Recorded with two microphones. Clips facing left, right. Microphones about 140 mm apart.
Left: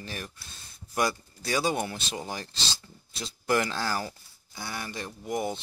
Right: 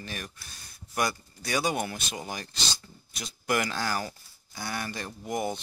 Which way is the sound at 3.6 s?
30° left (ahead or behind).